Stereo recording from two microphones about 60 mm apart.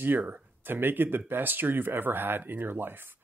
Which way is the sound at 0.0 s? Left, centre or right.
Right.